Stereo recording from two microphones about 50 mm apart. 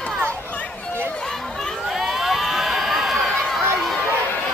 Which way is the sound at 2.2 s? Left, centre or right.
Centre.